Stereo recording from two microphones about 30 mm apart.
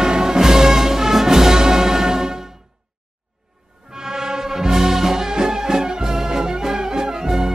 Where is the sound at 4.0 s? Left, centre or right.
Centre.